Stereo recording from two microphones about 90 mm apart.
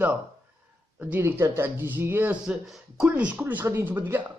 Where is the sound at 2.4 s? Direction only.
5° right (ahead or behind); by 4.3 s 25° right (ahead or behind).